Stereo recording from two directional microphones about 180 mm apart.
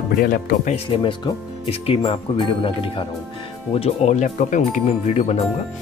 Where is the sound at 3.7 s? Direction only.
35° left (ahead or behind).